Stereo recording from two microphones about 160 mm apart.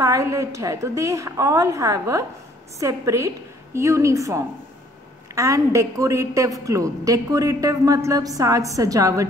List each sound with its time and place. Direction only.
0.0 s a woman's voice: 20° right (ahead or behind)